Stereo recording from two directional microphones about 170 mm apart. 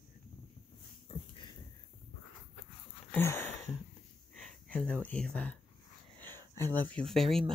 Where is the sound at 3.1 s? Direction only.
15° left (ahead or behind).